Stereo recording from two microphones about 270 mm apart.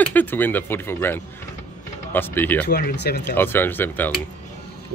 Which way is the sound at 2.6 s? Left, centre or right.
Left.